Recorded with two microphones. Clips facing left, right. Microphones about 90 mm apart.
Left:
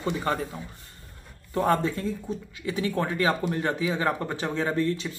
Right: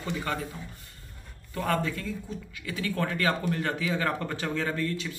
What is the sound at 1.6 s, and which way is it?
Speech, 25° left (ahead or behind).